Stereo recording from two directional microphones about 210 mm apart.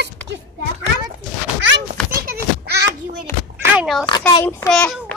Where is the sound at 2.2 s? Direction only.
50° right (ahead or behind).